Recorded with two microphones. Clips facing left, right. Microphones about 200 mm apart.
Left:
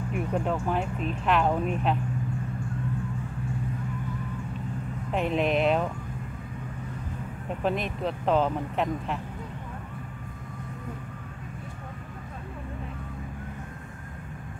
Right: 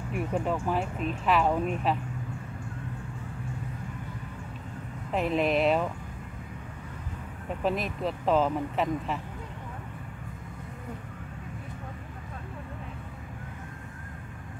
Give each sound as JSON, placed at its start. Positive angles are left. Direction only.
{"t": 0.1, "sound": "speech", "side_deg": 0}
{"t": 5.1, "sound": "speech", "side_deg": 0}
{"t": 7.6, "sound": "speech", "side_deg": 0}